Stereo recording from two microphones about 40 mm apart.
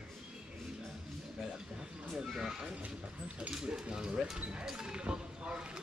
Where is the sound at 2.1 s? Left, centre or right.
Centre.